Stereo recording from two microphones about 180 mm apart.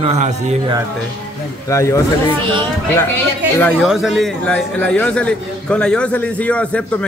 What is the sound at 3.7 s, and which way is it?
A man's voice, centre (ahead or behind).